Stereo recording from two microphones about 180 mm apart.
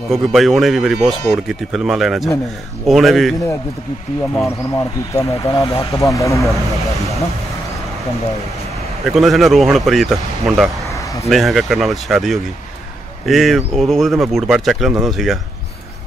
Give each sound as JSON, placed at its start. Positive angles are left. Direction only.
{"t": 0.1, "sound": "speech", "side_deg": 0}
{"t": 5.4, "sound": "speech", "side_deg": 20}
{"t": 9.1, "sound": "speech", "side_deg": 0}